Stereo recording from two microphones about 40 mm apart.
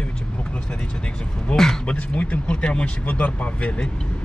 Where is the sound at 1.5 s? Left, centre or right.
Left.